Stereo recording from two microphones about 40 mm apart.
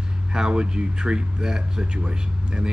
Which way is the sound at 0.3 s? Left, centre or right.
Right.